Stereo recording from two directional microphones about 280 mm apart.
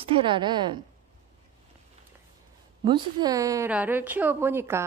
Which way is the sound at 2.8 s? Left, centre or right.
Centre.